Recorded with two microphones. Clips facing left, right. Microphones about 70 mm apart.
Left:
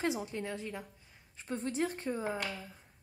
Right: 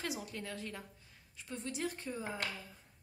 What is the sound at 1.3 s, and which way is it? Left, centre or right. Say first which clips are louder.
Speech: left 7 dB; left.